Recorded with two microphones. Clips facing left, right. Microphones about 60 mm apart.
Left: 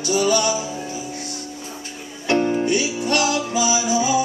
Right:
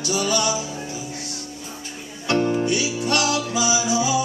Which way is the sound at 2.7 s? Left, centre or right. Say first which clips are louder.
Left 2 dB; left.